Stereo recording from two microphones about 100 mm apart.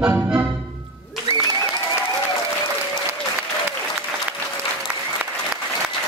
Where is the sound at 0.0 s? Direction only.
20° right (ahead or behind).